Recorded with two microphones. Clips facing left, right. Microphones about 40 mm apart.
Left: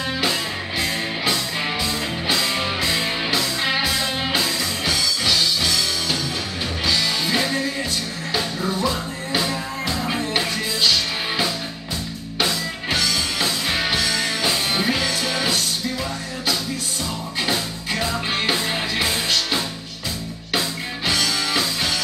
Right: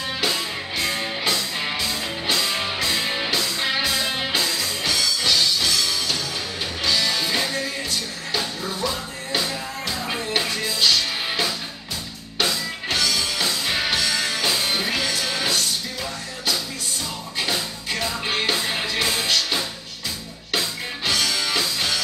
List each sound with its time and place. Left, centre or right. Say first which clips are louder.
0.2 s music: left 2 dB; centre
12.9 s music: left 1 dB; centre
17.5 s music: left 2 dB; centre